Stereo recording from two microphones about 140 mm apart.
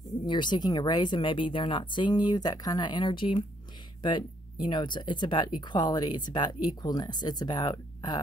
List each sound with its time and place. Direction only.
0.1 s speech: 35° left (ahead or behind)
4.6 s speech: 35° left (ahead or behind)